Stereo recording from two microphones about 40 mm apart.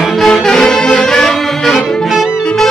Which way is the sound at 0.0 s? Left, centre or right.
Centre.